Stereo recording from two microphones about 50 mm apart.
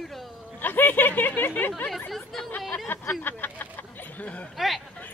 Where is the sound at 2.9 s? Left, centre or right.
Left.